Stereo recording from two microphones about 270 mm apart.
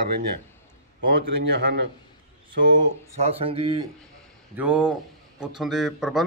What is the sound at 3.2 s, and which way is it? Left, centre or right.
Speech, right.